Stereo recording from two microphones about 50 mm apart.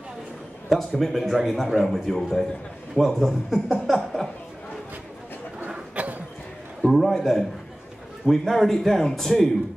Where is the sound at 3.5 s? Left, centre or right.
Centre.